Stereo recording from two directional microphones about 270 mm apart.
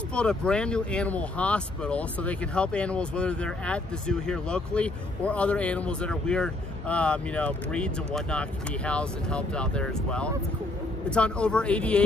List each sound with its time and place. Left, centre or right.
0.1 s speech: centre